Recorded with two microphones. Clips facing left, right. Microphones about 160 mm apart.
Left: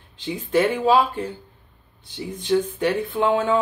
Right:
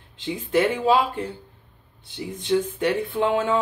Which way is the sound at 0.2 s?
20° right (ahead or behind).